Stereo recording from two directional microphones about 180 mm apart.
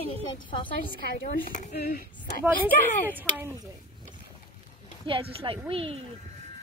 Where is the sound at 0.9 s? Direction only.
50° left (ahead or behind).